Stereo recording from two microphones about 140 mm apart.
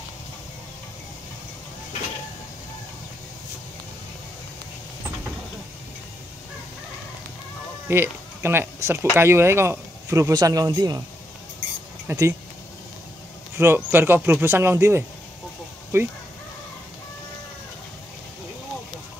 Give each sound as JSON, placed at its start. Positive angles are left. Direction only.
{"t": 7.9, "sound": "speech", "side_deg": -15}
{"t": 12.1, "sound": "speech", "side_deg": -20}
{"t": 13.6, "sound": "speech", "side_deg": -15}